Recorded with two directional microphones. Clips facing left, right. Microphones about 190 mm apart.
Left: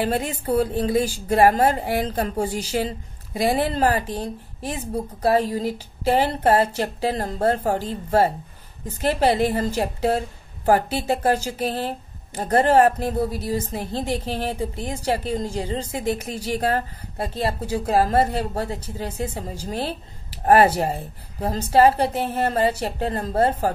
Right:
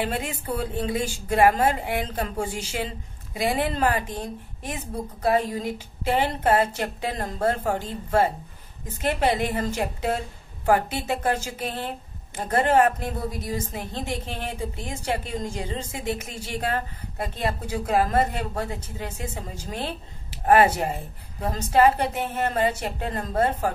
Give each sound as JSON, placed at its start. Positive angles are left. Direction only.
{"t": 0.0, "sound": "a woman's voice", "side_deg": 35}